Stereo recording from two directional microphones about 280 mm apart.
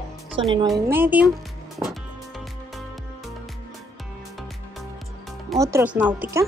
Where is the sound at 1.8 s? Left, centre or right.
Centre.